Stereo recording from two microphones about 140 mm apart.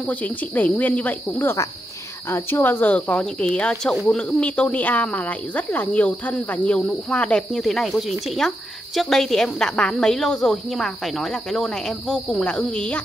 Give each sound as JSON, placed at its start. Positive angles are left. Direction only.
{"t": 0.6, "sound": "speech", "side_deg": 10}